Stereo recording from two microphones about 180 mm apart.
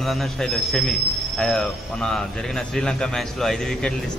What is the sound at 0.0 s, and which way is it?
A man's voice, centre (ahead or behind).